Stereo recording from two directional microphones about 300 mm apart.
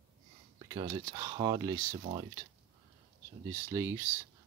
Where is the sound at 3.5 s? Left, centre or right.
Centre.